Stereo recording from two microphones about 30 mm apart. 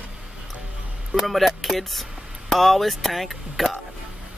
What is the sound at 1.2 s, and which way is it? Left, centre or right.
Speech, centre.